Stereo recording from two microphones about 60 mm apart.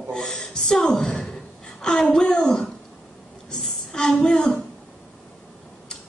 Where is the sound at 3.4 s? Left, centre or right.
Centre.